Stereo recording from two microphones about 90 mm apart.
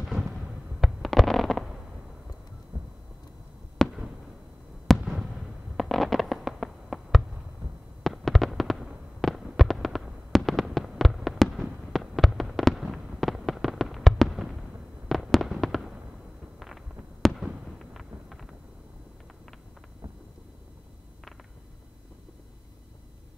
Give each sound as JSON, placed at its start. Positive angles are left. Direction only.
{"t": 0.1, "sound": "fireworks", "side_deg": 0}
{"t": 2.7, "sound": "a sound", "side_deg": -50}
{"t": 3.8, "sound": "fireworks", "side_deg": 5}